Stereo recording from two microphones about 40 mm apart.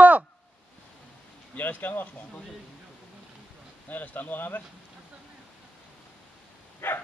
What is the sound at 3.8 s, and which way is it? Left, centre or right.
Speech, left.